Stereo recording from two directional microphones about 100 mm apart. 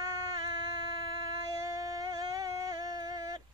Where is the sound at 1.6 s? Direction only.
35° right (ahead or behind).